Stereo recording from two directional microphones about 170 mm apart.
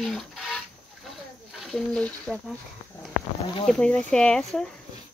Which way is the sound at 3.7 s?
5° left (ahead or behind).